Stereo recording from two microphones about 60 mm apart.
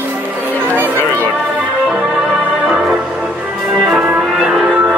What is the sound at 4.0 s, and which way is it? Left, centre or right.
Music, right.